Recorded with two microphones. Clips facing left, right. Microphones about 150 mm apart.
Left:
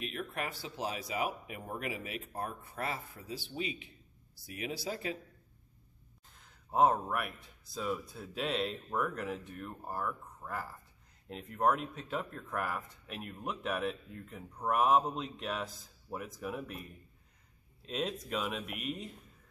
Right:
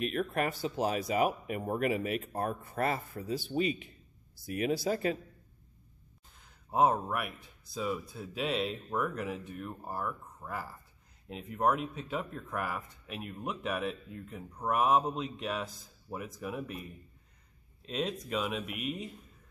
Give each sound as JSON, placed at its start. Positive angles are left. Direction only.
{"t": 0.0, "sound": "speech", "side_deg": -50}
{"t": 6.3, "sound": "speech", "side_deg": -5}